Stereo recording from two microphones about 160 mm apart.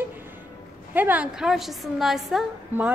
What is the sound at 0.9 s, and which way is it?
A woman's voice, 10° right (ahead or behind).